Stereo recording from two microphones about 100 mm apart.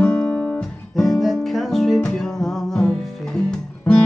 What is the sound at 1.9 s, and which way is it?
Music, 10° left (ahead or behind).